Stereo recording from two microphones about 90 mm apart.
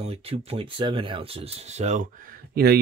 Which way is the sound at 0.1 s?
90° right.